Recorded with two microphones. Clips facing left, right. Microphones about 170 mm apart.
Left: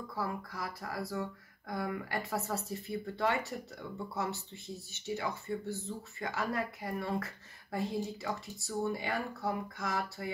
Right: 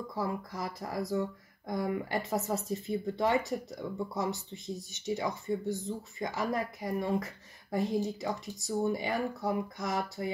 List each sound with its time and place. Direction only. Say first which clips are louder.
0.1 s speech: right 2 dB; 20° right (ahead or behind)